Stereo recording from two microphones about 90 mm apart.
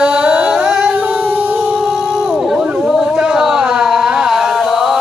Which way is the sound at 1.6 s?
Centre (ahead or behind).